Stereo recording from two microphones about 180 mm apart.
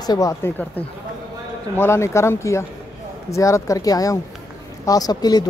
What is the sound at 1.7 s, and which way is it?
Speech, 15° left (ahead or behind).